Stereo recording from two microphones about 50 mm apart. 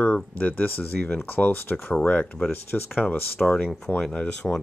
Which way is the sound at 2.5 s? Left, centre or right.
Left.